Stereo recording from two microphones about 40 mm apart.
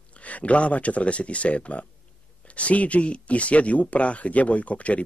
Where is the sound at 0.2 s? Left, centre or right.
Left.